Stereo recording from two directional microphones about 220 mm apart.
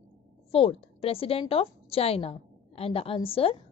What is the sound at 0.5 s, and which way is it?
A woman's voice, 25° left (ahead or behind).